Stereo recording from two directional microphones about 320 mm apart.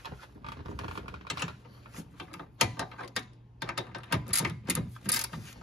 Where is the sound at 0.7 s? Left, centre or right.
Centre.